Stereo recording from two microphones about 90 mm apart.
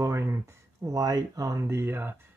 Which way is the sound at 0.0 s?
30° right (ahead or behind).